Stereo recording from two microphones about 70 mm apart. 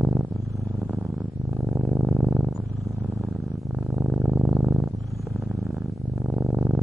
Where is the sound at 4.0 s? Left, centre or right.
Centre.